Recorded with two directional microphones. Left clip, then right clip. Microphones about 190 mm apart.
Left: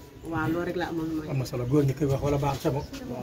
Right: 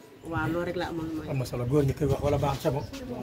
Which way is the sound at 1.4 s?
50° right (ahead or behind).